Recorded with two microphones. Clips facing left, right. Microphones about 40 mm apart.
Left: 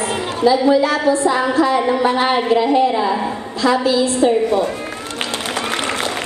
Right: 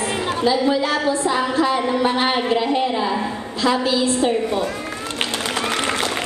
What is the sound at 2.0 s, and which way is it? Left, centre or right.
Speech, left.